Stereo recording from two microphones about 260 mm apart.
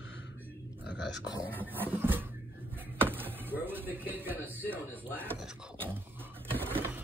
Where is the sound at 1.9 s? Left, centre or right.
Centre.